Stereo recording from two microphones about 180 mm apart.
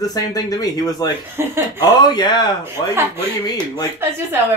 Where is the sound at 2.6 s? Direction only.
15° right (ahead or behind).